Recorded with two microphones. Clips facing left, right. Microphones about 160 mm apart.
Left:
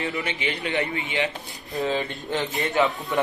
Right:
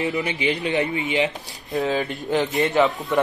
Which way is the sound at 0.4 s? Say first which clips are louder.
Right 5 dB; 20° right (ahead or behind).